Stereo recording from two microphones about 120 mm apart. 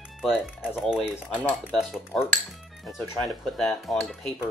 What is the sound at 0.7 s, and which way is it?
Speech, 5° right (ahead or behind).